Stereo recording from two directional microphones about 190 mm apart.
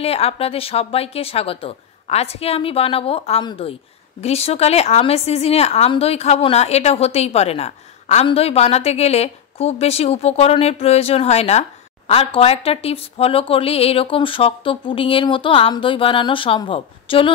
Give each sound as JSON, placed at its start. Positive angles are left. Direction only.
{"t": 0.0, "sound": "a woman's voice", "side_deg": 30}